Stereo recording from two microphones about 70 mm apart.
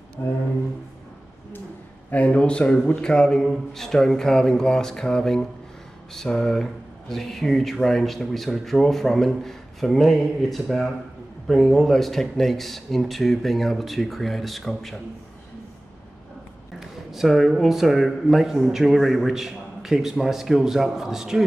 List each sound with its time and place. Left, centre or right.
0.2 s a sound: left
2.0 s a man's voice: left; by 15.0 s centre
16.8 s speech: centre